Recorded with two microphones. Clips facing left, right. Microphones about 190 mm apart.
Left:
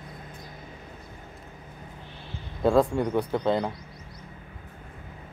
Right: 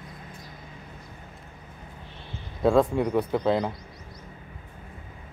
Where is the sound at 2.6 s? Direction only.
Centre (ahead or behind).